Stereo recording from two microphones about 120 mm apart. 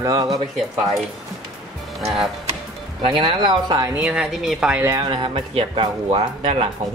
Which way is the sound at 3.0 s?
45° right (ahead or behind).